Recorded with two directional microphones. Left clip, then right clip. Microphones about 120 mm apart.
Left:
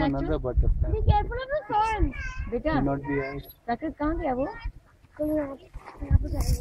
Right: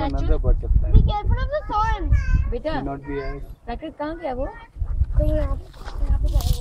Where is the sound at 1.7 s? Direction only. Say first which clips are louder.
Right 1 dB; 20° left (ahead or behind).